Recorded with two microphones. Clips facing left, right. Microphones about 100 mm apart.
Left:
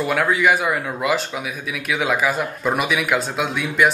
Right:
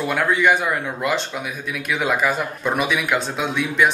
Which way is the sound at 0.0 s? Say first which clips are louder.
Left 1 dB; centre (ahead or behind).